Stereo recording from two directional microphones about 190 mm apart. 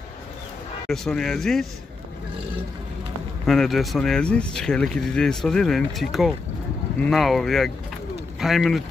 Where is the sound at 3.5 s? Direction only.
Centre (ahead or behind).